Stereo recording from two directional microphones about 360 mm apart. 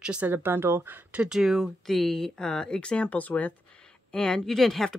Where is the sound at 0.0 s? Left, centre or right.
Centre.